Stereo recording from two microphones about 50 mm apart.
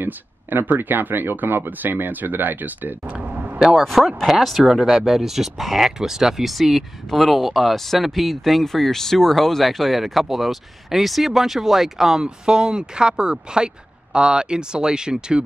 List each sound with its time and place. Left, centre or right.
0.0 s speech: right
3.2 s a sound: right
3.8 s speech: centre